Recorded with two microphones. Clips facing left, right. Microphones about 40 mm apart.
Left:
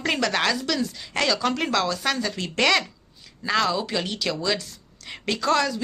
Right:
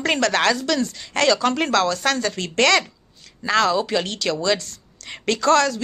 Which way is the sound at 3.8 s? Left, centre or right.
Centre.